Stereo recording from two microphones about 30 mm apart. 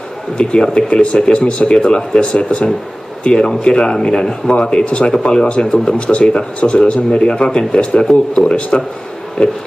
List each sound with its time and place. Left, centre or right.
0.4 s a man's voice: left
1.8 s a man's voice: left
3.3 s a man's voice: left
8.1 s a man's voice: left
8.5 s a man's voice: left